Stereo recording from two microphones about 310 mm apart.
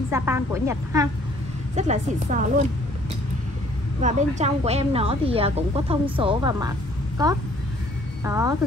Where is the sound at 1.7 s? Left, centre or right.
Right.